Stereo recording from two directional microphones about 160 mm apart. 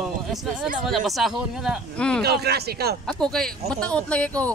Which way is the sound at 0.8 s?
Centre (ahead or behind).